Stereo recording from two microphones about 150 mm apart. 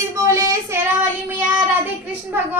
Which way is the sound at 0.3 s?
20° right (ahead or behind).